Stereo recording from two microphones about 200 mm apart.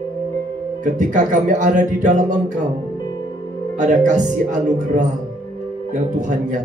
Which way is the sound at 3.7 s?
40° right (ahead or behind).